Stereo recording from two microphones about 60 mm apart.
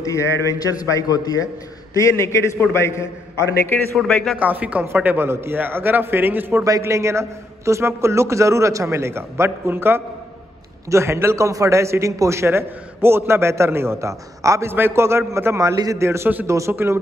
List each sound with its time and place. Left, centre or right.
0.0 s a man's voice: left
0.6 s a man's voice: left
2.0 s a man's voice: left
4.1 s a man's voice: centre
4.4 s a man's voice: right
6.8 s a man's voice: right
10.9 s a man's voice: right
14.7 s a man's voice: right
16.0 s a man's voice: right
16.7 s a man's voice: right